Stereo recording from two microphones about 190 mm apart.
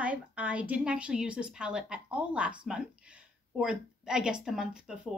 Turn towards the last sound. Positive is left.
turn(degrees=-5)  # may be behind; listen again after turning